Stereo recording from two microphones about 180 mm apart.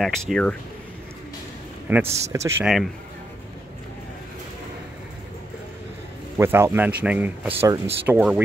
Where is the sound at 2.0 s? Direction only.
35° right (ahead or behind).